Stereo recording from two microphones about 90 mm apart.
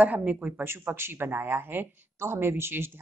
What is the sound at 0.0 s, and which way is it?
A woman's voice, 15° right (ahead or behind).